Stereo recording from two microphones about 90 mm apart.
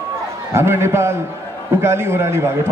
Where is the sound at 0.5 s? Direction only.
30° right (ahead or behind).